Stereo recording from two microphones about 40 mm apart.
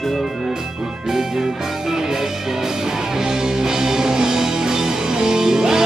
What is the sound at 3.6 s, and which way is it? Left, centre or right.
Music, centre.